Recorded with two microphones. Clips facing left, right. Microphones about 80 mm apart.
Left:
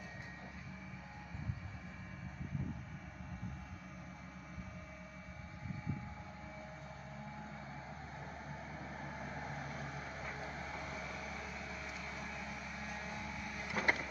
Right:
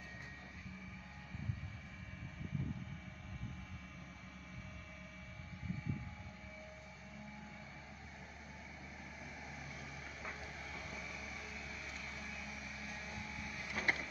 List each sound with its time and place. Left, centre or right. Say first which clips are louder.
9.0 s vehicle: left 7 dB; left